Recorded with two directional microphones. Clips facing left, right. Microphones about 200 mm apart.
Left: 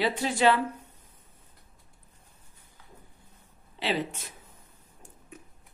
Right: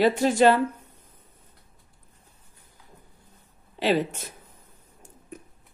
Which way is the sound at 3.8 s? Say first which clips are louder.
Right 7 dB; 45° right (ahead or behind).